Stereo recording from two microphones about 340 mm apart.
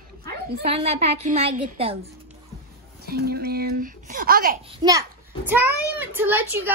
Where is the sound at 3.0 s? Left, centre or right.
Right.